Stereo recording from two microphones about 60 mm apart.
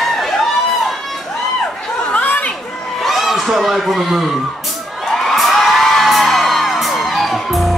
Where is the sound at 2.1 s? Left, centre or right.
Left.